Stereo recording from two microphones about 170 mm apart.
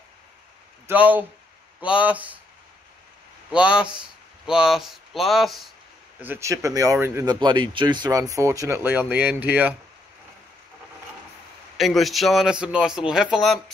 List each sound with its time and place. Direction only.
0.8 s speech: 10° right (ahead or behind)
3.5 s speech: 5° right (ahead or behind)
6.2 s speech: 15° right (ahead or behind)
11.7 s speech: centre (ahead or behind)